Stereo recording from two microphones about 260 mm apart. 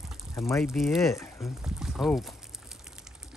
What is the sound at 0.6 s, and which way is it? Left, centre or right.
Speech, centre.